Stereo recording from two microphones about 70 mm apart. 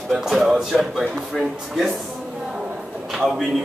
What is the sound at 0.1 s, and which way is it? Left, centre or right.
Speech, centre.